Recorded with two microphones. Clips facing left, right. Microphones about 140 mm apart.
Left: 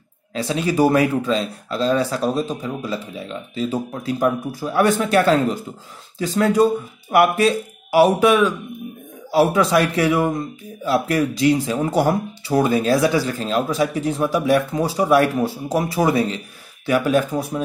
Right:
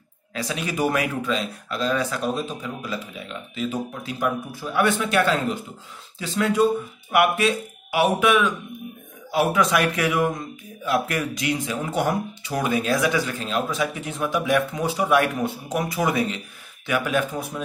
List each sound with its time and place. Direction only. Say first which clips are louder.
0.3 s speech: left 7 dB; 30° left (ahead or behind)